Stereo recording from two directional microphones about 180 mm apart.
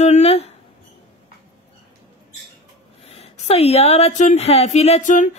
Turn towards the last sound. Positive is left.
turn(degrees=40)  # may be behind; listen again after turning